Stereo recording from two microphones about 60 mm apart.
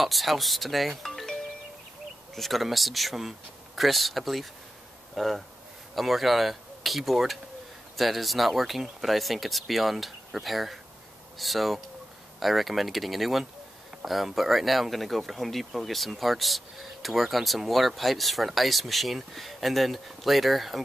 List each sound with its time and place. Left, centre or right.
0.0 s speech: centre